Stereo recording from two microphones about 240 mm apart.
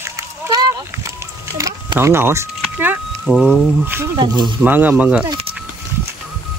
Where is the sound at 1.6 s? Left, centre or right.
Centre.